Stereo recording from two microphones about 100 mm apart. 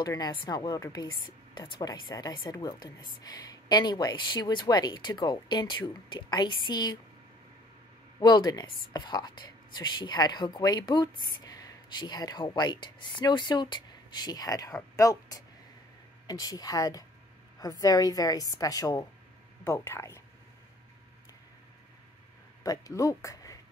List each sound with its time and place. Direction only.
0.0 s a woman's voice: 40° left (ahead or behind)
8.2 s a woman's voice: 45° left (ahead or behind)
19.6 s speech: 25° left (ahead or behind)
22.6 s speech: 35° left (ahead or behind)